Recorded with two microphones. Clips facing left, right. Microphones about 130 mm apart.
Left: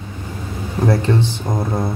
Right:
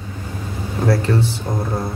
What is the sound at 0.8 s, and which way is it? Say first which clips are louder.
Speech: left 1 dB; 20° left (ahead or behind).